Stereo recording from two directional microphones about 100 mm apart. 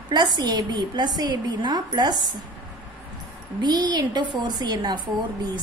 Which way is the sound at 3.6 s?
45° right (ahead or behind).